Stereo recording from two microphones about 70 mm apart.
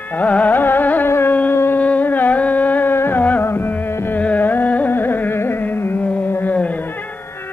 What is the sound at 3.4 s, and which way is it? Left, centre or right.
Music, left.